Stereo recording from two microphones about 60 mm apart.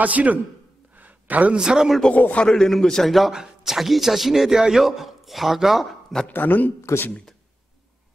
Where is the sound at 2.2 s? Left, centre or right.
Left.